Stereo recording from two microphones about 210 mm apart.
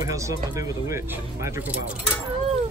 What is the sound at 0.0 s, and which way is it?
Speech, 15° right (ahead or behind).